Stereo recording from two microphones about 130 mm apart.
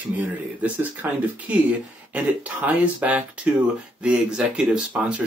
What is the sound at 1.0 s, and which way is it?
Speech, 15° right (ahead or behind).